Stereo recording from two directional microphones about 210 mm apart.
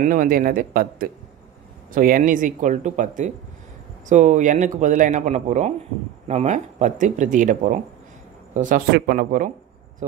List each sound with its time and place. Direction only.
0.0 s a man's voice: 40° right (ahead or behind)